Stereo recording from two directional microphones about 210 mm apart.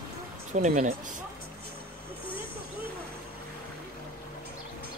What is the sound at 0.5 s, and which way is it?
Speech, 35° right (ahead or behind).